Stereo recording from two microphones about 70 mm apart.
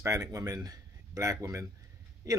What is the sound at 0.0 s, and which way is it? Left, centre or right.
A man's voice, right.